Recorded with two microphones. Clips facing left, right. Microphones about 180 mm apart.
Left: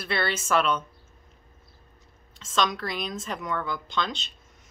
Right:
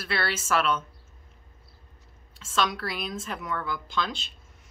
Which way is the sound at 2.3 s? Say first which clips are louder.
Left 1 dB; 5° right (ahead or behind).